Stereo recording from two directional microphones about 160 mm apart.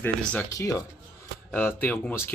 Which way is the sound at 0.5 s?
20° left (ahead or behind).